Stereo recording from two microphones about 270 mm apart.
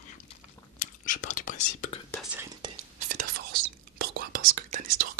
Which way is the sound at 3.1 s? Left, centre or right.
Right.